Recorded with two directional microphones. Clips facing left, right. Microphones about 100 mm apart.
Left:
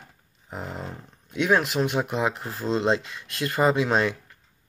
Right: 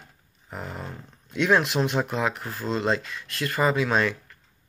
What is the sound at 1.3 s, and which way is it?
Speech, 10° left (ahead or behind).